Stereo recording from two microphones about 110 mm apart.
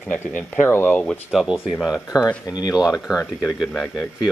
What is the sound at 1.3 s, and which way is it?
Speech, 5° right (ahead or behind).